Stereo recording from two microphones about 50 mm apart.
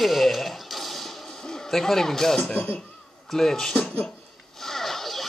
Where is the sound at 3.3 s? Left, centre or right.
Centre.